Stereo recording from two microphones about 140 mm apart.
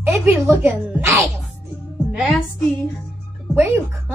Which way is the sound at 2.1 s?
Centre (ahead or behind).